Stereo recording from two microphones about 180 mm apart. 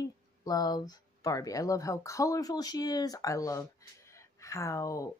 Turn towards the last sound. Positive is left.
turn(degrees=15)  # may be behind; listen again after turning